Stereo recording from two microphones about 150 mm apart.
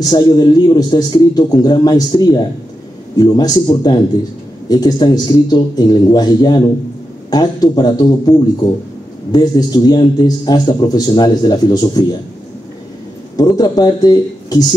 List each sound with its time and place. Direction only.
0.1 s a man's voice: 25° left (ahead or behind)
13.4 s speech: 25° left (ahead or behind)